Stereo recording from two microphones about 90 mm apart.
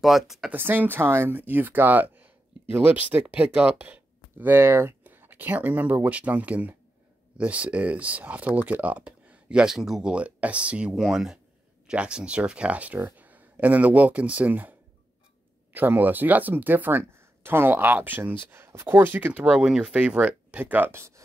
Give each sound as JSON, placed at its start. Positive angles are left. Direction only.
{"t": 0.0, "sound": "speech", "side_deg": 0}
{"t": 0.5, "sound": "speech", "side_deg": -20}
{"t": 20.9, "sound": "speech", "side_deg": -30}